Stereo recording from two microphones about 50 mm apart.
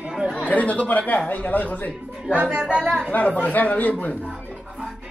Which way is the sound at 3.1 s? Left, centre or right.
Left.